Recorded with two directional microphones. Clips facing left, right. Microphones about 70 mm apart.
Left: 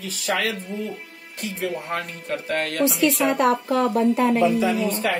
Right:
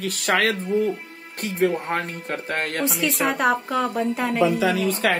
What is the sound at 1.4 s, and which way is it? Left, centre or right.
Speech, right.